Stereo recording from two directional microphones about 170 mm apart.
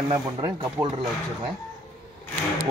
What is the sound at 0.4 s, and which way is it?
Speech, 20° right (ahead or behind).